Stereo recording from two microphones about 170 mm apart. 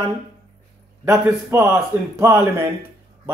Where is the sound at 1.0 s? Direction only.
10° right (ahead or behind).